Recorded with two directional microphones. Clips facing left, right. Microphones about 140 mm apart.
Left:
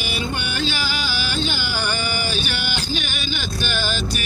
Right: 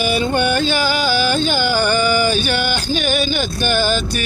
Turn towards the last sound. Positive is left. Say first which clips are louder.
# right 8 dB
turn(degrees=-50)  # may be behind; listen again after turning